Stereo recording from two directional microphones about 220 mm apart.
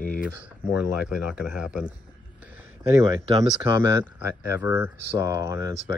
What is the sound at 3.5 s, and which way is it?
Speech, 10° right (ahead or behind).